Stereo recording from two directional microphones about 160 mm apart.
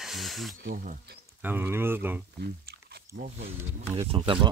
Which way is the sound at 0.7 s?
55° right (ahead or behind).